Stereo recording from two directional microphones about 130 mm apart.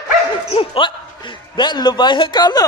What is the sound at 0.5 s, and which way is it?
A man's voice, 40° left (ahead or behind).